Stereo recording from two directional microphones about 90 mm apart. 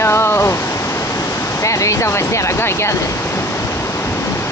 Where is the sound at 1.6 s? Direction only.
35° left (ahead or behind).